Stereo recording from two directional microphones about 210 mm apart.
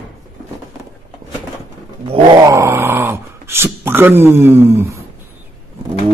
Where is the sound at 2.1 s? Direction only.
25° right (ahead or behind).